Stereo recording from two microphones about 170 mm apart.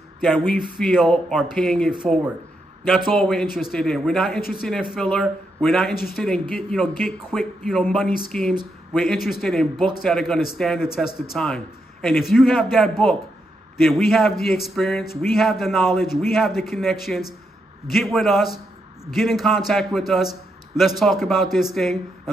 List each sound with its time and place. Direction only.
0.6 s a man's voice: centre (ahead or behind)